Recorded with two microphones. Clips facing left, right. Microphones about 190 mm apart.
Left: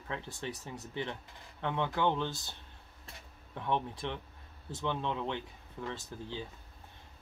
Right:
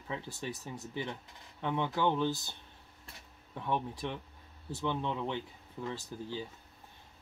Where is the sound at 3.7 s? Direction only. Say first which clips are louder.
Left 1 dB; 10° right (ahead or behind).